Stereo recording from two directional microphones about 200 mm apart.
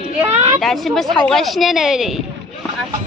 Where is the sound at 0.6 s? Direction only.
Centre (ahead or behind).